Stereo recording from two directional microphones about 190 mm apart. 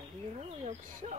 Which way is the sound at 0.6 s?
40° right (ahead or behind).